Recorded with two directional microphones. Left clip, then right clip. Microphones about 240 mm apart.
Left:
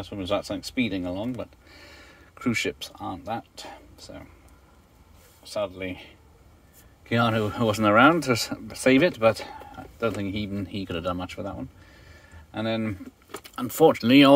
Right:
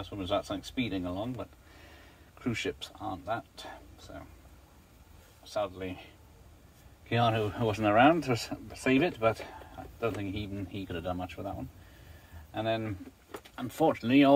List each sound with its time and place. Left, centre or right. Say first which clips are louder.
0.0 s speech: left 4 dB; left
5.6 s speech: left 4 dB; left
7.1 s speech: left 4 dB; left
12.5 s speech: left 3 dB; left